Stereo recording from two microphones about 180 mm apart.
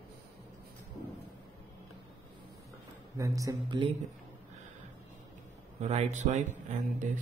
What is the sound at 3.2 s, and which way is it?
Speech, 20° right (ahead or behind).